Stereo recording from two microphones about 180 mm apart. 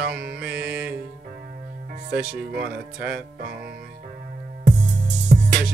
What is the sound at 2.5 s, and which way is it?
Speech, 55° right (ahead or behind).